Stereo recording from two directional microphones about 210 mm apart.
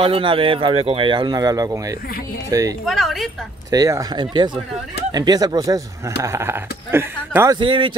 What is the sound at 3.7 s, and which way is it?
Speech, 15° right (ahead or behind).